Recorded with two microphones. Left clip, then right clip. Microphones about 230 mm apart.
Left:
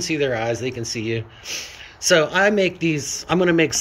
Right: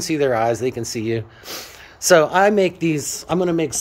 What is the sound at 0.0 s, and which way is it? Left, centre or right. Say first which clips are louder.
Speech: right 3 dB; centre.